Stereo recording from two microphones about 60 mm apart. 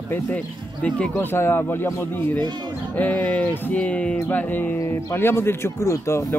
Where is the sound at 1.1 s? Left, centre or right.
Left.